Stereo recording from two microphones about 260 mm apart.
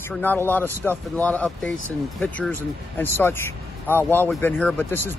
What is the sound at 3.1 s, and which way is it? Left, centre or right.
Speech, centre.